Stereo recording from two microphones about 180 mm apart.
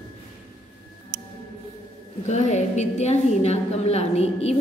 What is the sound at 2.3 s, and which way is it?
A woman's voice, 40° left (ahead or behind).